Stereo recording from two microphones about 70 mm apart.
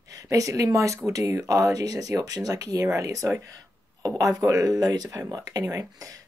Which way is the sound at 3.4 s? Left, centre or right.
Right.